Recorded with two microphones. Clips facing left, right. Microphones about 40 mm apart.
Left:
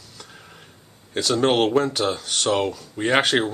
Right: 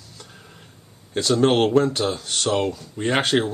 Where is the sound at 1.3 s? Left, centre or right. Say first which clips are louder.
Right 2 dB; centre.